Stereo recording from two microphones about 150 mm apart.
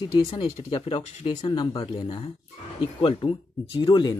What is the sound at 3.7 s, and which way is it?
Speech, 30° left (ahead or behind).